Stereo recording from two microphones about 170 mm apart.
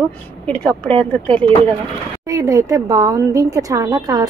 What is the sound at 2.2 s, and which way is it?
A woman's voice, 20° right (ahead or behind).